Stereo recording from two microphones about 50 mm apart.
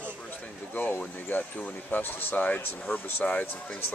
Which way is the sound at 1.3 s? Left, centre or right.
Left.